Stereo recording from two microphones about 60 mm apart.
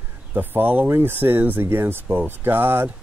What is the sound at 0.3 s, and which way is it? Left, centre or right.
Speech, right.